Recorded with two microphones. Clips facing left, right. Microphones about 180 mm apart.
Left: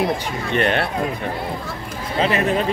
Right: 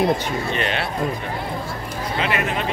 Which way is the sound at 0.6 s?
55° left (ahead or behind).